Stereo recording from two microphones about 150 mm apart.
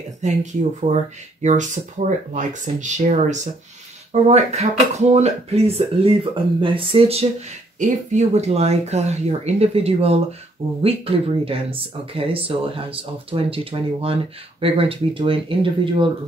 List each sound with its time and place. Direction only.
0.2 s speech: 50° right (ahead or behind)
7.8 s speech: 50° right (ahead or behind); by 16.1 s 35° right (ahead or behind)